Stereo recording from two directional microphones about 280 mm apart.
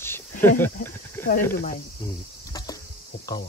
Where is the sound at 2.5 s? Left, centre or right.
Centre.